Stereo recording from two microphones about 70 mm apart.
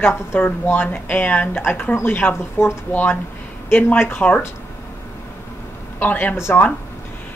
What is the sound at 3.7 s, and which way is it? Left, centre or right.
Speech, left.